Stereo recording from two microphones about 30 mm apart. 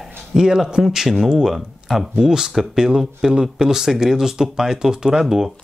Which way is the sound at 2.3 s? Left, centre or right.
Centre.